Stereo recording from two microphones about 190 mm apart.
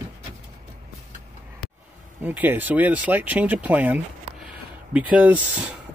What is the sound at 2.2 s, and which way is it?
Speech, 10° right (ahead or behind).